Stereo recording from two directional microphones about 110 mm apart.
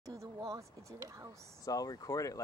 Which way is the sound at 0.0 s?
30° right (ahead or behind).